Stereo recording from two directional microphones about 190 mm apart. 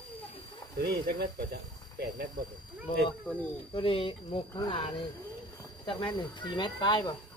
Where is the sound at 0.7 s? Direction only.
55° right (ahead or behind).